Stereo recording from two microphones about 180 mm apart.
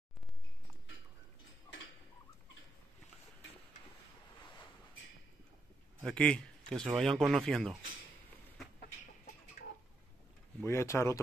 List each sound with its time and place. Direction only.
6.0 s speech: 5° left (ahead or behind)
8.7 s chicken: 60° left (ahead or behind)
10.6 s speech: 15° left (ahead or behind)